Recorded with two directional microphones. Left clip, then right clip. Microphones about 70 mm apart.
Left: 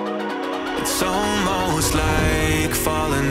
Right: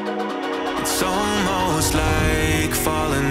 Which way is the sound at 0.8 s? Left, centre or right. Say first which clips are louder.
Left 1 dB; centre.